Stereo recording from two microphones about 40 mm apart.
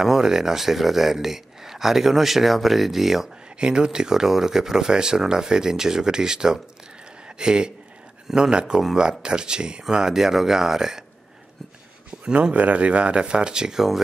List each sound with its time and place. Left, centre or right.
0.0 s speech: centre
3.5 s speech: right
12.5 s speech: right; by 14.0 s centre